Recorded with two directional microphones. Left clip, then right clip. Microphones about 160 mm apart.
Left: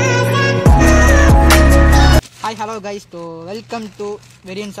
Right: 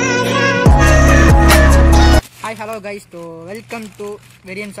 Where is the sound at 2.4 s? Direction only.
40° left (ahead or behind).